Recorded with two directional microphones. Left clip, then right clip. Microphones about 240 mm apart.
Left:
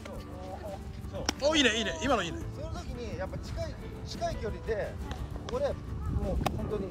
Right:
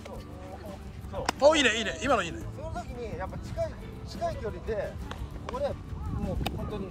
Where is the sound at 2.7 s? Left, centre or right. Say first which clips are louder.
Right 6 dB; right.